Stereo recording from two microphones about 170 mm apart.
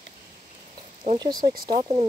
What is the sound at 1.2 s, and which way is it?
Speech, 25° right (ahead or behind).